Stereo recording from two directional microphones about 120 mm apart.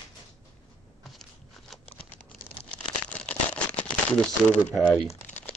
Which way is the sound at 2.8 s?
10° left (ahead or behind).